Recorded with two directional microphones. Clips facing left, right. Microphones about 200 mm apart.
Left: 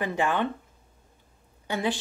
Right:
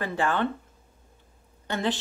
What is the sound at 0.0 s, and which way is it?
Speech, 15° left (ahead or behind).